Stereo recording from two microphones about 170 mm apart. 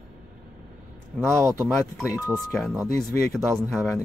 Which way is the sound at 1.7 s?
Centre (ahead or behind).